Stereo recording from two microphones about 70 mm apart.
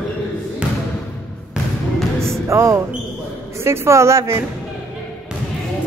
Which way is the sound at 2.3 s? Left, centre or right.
Right.